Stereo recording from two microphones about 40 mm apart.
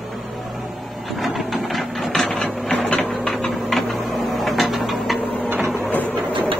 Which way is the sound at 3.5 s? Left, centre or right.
Centre.